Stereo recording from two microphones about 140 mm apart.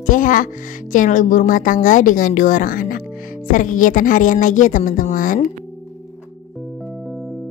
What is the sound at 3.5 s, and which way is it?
Speech, 70° left (ahead or behind).